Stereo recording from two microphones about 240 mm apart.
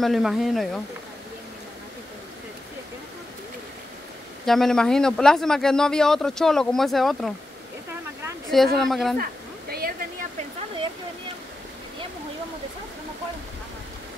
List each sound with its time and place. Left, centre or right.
0.0 s speech: centre
4.5 s speech: centre
8.7 s speech: centre
9.2 s a sound: right